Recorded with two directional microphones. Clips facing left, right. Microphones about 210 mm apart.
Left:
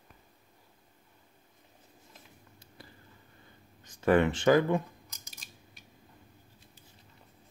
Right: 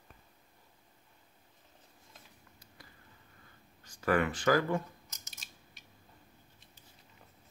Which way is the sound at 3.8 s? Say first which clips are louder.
Left 5 dB; 20° left (ahead or behind).